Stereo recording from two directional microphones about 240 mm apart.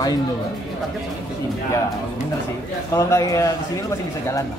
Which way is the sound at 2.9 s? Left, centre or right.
Centre.